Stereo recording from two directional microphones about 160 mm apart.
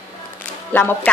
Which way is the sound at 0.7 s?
10° left (ahead or behind).